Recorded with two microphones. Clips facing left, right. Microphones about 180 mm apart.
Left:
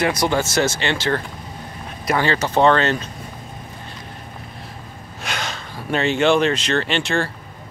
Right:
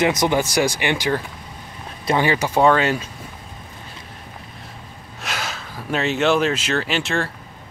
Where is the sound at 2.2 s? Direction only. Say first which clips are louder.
Even; 15° right (ahead or behind).